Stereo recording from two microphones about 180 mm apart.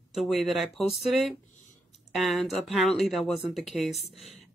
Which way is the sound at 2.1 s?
Centre (ahead or behind).